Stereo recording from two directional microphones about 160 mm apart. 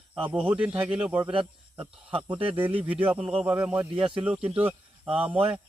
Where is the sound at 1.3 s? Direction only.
30° right (ahead or behind).